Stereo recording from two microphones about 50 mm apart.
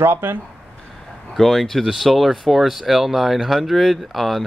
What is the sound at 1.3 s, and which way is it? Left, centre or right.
Speech, centre.